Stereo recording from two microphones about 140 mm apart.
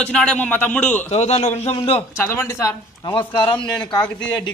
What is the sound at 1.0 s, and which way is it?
Speech, 50° left (ahead or behind).